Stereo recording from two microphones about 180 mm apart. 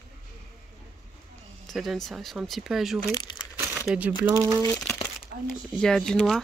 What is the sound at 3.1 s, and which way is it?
Crumpling, 25° left (ahead or behind).